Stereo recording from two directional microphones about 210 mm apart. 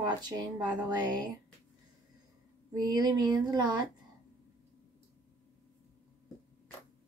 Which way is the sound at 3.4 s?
20° right (ahead or behind).